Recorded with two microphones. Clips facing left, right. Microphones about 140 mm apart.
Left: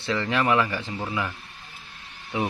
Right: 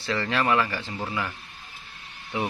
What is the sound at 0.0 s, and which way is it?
Speech, 20° left (ahead or behind).